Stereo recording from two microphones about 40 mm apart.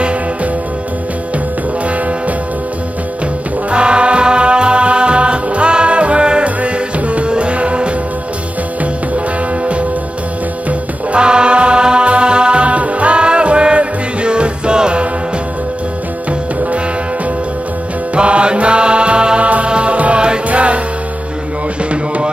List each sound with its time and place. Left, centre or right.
3.7 s music: right
10.7 s music: right
18.1 s music: right